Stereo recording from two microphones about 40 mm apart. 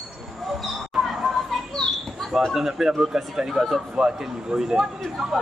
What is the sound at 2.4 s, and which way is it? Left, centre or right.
Speech, centre.